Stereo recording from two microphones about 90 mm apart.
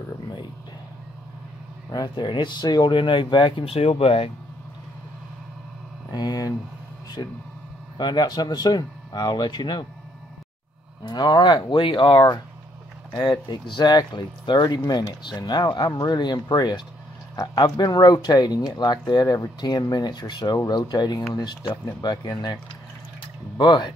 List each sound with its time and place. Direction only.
1.9 s speech: 55° left (ahead or behind); by 4.3 s 85° left
6.1 s speech: 45° left (ahead or behind)
8.0 s speech: 55° left (ahead or behind)
11.1 s speech: 50° left (ahead or behind)
13.1 s speech: 55° left (ahead or behind)
23.6 s speech: 55° left (ahead or behind)